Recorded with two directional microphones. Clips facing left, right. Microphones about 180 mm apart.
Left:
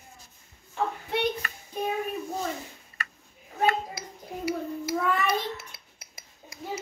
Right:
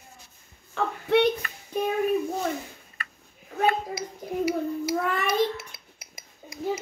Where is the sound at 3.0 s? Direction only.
80° left.